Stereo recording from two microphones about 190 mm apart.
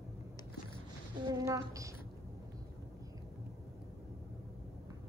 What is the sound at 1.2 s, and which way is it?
Speech, 15° right (ahead or behind).